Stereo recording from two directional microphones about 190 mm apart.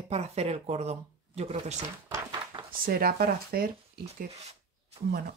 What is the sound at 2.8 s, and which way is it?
Speech, 50° right (ahead or behind).